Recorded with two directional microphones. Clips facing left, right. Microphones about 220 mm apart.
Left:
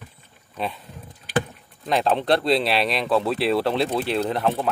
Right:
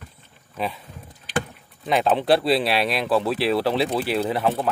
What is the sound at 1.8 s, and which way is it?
Speech, centre (ahead or behind).